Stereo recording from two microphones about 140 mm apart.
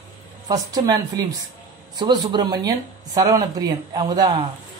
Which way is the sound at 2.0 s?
30° right (ahead or behind).